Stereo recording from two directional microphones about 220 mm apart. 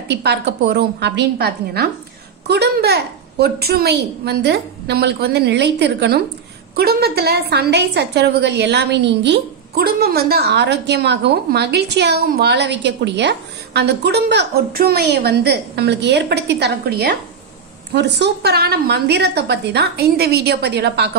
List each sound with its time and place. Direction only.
0.1 s a woman's voice: 50° right (ahead or behind)